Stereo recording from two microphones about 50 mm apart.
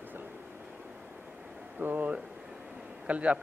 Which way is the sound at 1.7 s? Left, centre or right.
Right.